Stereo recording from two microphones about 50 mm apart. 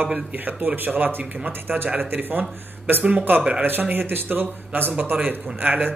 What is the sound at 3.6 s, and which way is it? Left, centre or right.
Speech, right.